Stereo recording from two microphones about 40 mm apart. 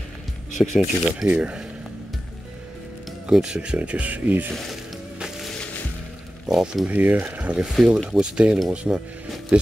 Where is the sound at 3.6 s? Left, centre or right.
Right.